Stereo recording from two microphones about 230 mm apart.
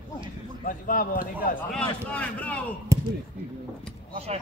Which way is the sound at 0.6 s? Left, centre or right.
Left.